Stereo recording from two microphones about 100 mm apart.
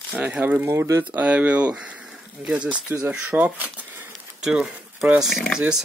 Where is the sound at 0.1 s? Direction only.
15° right (ahead or behind).